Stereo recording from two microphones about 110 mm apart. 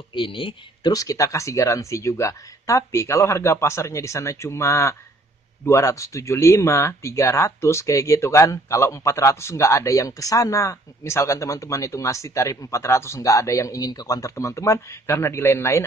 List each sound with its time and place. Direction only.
0.1 s speech: 50° left (ahead or behind)
0.9 s speech: 30° left (ahead or behind)